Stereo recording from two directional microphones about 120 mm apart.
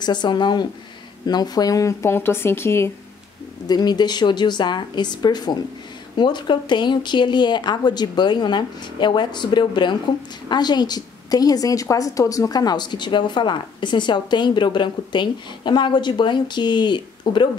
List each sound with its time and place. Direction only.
0.0 s speech: 40° left (ahead or behind); by 2.9 s 20° left (ahead or behind)
3.6 s speech: 35° left (ahead or behind)